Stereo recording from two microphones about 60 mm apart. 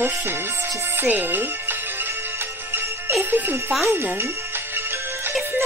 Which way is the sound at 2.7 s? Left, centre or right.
Right.